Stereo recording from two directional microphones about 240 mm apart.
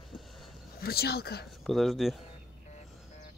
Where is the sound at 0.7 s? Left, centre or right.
Left.